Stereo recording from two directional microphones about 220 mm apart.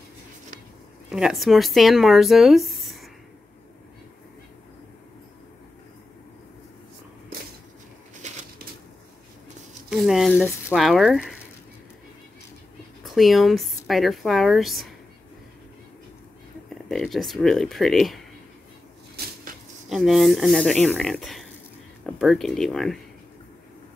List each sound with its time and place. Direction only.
1.1 s speech: centre (ahead or behind)
2.8 s a sound: centre (ahead or behind)
8.2 s crushing: 35° right (ahead or behind)
9.8 s speech: centre (ahead or behind)
13.0 s speech: centre (ahead or behind)
16.9 s speech: centre (ahead or behind)
19.9 s speech: centre (ahead or behind)